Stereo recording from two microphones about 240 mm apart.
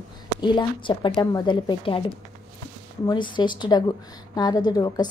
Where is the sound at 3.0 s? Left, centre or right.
Centre.